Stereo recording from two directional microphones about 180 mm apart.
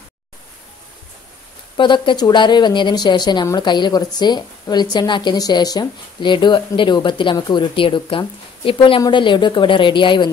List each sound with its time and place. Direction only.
1.8 s a woman's voice: 25° left (ahead or behind)